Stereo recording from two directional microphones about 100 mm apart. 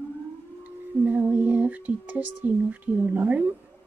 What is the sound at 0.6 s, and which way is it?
Music, 15° right (ahead or behind).